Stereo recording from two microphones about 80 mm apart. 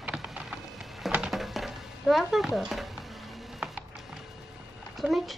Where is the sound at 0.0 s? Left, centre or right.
Centre.